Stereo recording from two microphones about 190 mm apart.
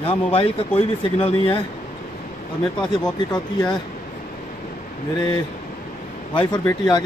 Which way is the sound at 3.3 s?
20° left (ahead or behind).